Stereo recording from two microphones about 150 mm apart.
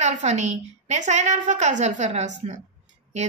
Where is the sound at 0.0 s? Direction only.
50° right (ahead or behind).